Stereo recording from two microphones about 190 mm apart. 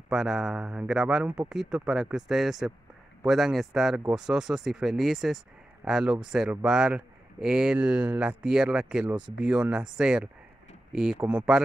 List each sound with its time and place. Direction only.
0.1 s speech: centre (ahead or behind)